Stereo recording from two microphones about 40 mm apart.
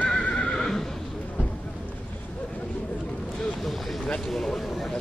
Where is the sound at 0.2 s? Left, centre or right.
Left.